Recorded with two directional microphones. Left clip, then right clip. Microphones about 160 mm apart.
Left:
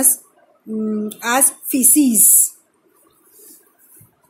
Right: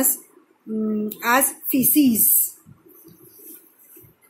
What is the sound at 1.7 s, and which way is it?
Speech, 25° left (ahead or behind).